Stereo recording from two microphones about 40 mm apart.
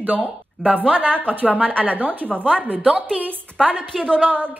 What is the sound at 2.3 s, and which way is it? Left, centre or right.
Speech, left.